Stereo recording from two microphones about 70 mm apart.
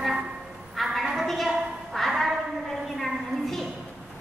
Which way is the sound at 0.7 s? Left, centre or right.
Centre.